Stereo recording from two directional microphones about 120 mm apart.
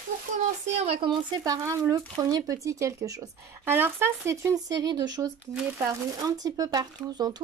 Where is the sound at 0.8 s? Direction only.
55° right (ahead or behind).